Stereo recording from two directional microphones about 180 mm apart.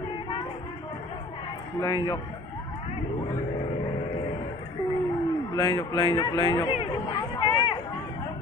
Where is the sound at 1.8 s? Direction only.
20° left (ahead or behind).